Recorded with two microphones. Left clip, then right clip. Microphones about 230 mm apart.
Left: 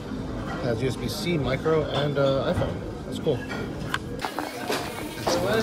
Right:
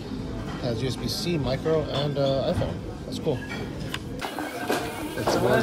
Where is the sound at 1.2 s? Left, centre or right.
Right.